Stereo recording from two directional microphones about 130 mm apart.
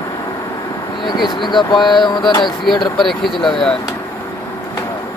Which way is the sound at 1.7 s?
Centre (ahead or behind).